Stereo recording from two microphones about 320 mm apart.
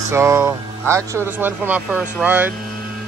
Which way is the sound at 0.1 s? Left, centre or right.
Centre.